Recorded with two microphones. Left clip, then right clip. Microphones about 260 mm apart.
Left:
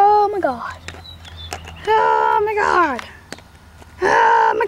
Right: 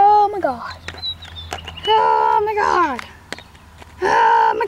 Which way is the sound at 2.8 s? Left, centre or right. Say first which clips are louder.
Left 1 dB; centre.